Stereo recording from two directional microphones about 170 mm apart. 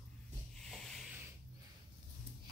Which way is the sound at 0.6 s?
Centre (ahead or behind).